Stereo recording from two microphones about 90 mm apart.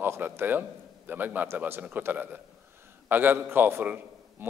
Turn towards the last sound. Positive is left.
turn(degrees=-25)  # may be behind; listen again after turning